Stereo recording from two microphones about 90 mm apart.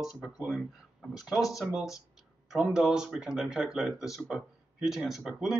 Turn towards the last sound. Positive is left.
turn(degrees=-5)  # may be behind; listen again after turning